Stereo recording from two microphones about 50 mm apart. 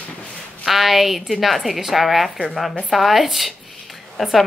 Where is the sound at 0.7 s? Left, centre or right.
Centre.